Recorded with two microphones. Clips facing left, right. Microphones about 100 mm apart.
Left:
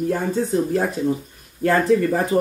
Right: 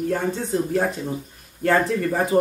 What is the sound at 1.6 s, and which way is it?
Speech, centre (ahead or behind).